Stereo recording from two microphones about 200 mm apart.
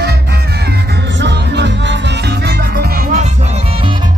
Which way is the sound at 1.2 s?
60° right (ahead or behind).